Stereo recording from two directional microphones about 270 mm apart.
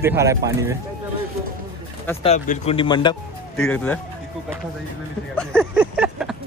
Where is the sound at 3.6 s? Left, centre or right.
Centre.